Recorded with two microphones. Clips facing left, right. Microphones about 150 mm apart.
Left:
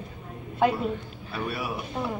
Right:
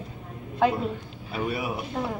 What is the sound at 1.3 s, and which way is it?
Speech, 20° right (ahead or behind).